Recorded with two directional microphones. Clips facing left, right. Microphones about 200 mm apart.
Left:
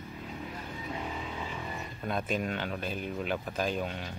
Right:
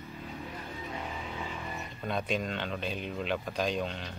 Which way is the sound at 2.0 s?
5° left (ahead or behind).